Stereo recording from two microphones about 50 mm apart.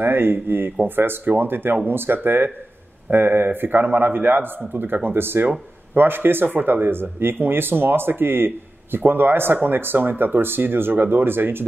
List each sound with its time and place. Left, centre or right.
0.0 s speech: right